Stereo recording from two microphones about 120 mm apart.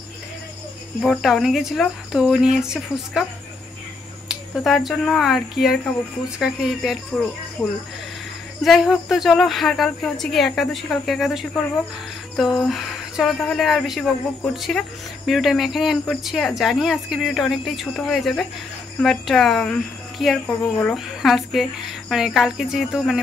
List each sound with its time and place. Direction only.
1.2 s speech: centre (ahead or behind)
4.3 s speech: centre (ahead or behind)
8.6 s speech: centre (ahead or behind)